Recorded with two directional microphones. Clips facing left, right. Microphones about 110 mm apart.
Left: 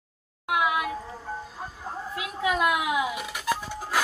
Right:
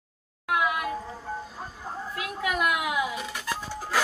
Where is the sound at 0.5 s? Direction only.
15° left (ahead or behind).